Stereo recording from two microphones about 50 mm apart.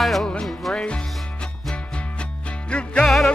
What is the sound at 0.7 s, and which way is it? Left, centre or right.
Music, left.